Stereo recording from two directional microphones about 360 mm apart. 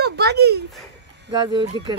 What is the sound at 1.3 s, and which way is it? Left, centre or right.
Speech, centre.